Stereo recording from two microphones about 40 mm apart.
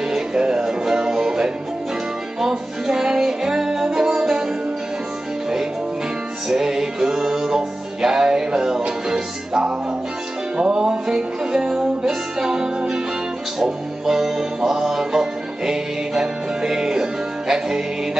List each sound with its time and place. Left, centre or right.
0.1 s music: centre
6.5 s music: centre